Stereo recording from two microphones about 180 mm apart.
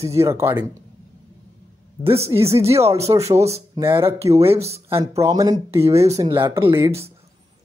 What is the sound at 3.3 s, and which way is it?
Speech, 35° right (ahead or behind).